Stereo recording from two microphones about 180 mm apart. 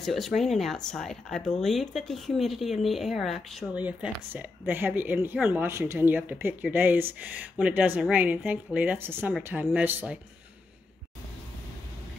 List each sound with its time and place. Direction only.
0.0 s speech: centre (ahead or behind)